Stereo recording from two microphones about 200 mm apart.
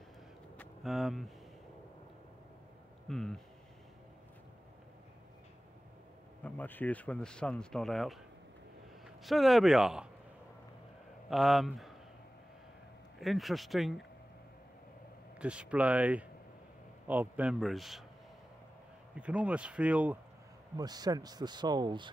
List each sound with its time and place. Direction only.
0.6 s vehicle: centre (ahead or behind)
3.1 s speech: centre (ahead or behind)
6.4 s speech: 10° left (ahead or behind)
11.2 s speech: centre (ahead or behind)
13.2 s speech: centre (ahead or behind)
15.3 s speech: 5° right (ahead or behind)
19.1 s speech: 5° right (ahead or behind)
20.7 s speech: 20° right (ahead or behind)